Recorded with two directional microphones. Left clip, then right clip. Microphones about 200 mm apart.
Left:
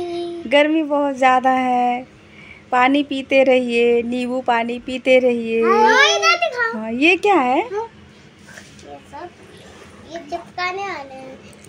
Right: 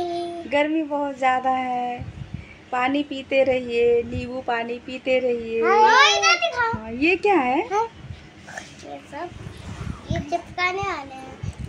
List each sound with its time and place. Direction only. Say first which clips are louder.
0.0 s a sound: left 1 dB; 10° right (ahead or behind)
0.5 s a woman's voice: left 7 dB; 50° left (ahead or behind)
5.6 s a child's voice: left 1 dB; 10° right (ahead or behind)
5.9 s a sound: left 1 dB; 25° left (ahead or behind)
6.8 s a woman's voice: left 5 dB; 40° left (ahead or behind)
10.5 s a child's voice: left 1 dB; 10° left (ahead or behind)